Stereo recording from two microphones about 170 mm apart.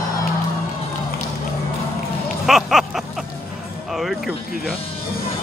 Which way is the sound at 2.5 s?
Centre (ahead or behind).